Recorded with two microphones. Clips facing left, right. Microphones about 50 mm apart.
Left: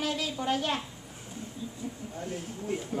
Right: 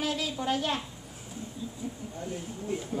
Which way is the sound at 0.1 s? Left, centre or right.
Centre.